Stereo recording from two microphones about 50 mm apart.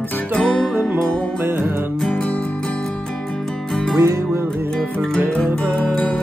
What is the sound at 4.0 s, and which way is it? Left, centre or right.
Music, right.